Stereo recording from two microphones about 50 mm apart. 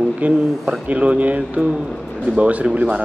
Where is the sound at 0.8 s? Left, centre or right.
Right.